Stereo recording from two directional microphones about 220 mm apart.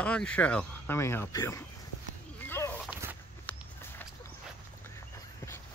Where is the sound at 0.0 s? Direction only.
5° left (ahead or behind).